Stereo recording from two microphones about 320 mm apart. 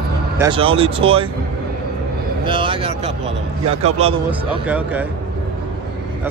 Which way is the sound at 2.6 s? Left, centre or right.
Centre.